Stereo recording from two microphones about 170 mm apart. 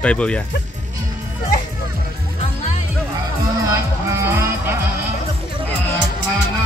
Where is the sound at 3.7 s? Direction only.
15° right (ahead or behind).